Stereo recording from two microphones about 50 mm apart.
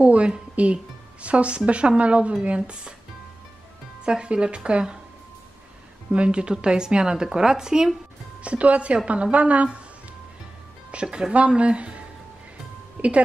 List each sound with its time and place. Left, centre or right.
0.0 s speech: right
4.0 s speech: right
6.1 s a woman's voice: right
8.4 s speech: right
10.9 s speech: right